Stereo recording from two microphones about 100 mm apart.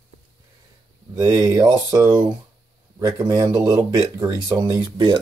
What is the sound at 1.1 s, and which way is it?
Speech, 35° right (ahead or behind).